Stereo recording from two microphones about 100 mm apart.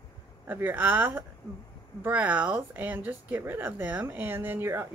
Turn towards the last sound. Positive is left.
turn(degrees=-20)  # may be behind; listen again after turning